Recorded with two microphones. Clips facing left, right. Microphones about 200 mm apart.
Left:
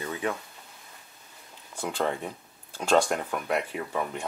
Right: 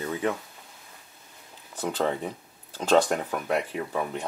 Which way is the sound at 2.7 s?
10° left (ahead or behind).